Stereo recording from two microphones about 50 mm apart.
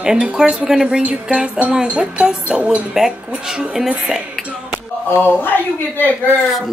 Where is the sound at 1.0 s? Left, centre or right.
Right.